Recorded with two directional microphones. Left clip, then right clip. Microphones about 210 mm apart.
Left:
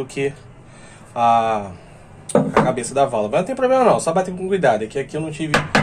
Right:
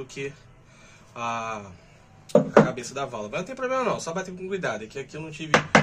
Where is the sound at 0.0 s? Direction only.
40° right (ahead or behind).